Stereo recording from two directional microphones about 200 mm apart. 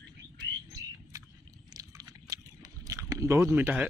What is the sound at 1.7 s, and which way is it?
Biting, 20° right (ahead or behind).